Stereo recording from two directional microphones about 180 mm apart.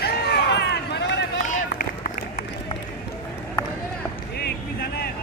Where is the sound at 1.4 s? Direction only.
45° left (ahead or behind).